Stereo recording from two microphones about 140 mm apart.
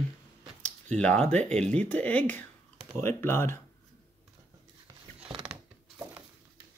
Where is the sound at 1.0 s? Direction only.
10° left (ahead or behind).